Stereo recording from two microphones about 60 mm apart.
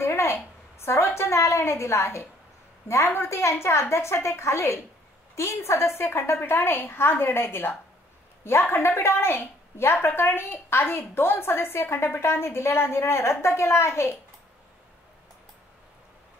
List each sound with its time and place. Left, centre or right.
0.0 s a sound: left
0.7 s a woman's voice: left
8.7 s a woman's voice: left